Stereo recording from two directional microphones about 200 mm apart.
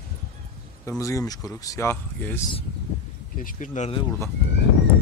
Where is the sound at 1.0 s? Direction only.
15° left (ahead or behind).